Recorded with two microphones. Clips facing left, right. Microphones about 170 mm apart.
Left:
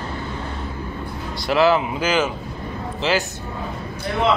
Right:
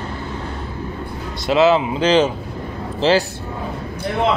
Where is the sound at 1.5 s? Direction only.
20° right (ahead or behind).